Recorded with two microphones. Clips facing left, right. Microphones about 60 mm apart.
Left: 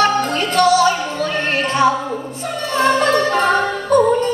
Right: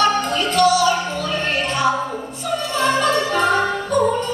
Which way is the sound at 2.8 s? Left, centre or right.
Left.